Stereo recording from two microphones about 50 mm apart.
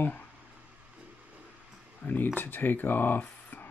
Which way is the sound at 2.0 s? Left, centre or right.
Left.